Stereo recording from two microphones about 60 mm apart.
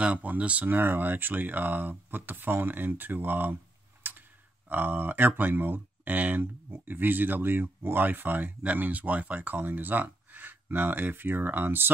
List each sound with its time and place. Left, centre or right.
0.0 s speech: right
0.7 s speech: right
4.0 s clicking: right
4.6 s speech: right